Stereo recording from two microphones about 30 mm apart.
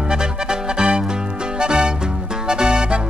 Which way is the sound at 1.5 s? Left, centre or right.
Right.